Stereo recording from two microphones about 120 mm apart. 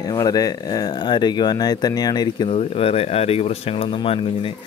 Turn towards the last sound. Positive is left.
turn(degrees=50)  # may be behind; listen again after turning